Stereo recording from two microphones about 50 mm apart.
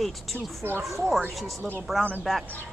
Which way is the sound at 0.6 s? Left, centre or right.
Right.